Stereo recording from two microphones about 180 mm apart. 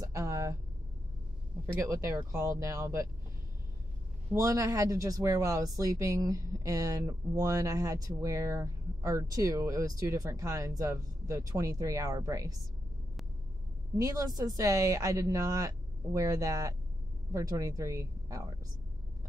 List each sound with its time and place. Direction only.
0.0 s a sound: 20° right (ahead or behind)
1.9 s speech: 15° right (ahead or behind)
4.3 s speech: 20° right (ahead or behind)
13.9 s speech: 20° right (ahead or behind)